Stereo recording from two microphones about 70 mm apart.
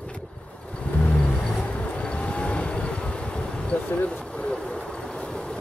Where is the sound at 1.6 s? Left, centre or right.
Centre.